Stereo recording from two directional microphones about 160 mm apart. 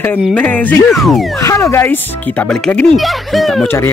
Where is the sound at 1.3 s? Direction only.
20° left (ahead or behind); by 3.6 s centre (ahead or behind).